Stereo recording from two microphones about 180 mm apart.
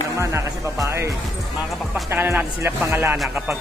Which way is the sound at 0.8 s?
15° right (ahead or behind).